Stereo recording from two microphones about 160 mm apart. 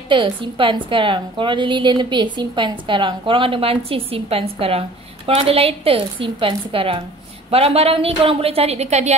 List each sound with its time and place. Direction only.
0.1 s a woman's voice: 30° right (ahead or behind)